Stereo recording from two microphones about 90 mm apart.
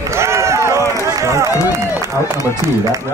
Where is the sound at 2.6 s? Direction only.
30° right (ahead or behind).